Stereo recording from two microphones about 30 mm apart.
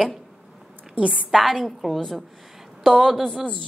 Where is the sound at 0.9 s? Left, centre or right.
Right.